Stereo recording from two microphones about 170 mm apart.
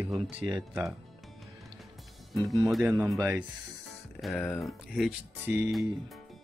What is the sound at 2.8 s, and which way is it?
Speech, 10° right (ahead or behind).